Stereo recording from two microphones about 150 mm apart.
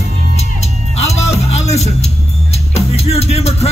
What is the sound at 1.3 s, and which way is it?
Music, 45° left (ahead or behind).